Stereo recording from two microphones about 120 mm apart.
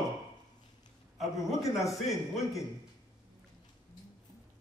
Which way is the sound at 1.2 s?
Centre (ahead or behind).